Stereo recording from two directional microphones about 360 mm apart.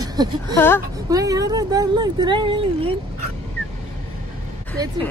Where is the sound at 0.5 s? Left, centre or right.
Centre.